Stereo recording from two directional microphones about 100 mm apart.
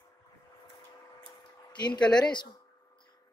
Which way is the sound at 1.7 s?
45° left (ahead or behind).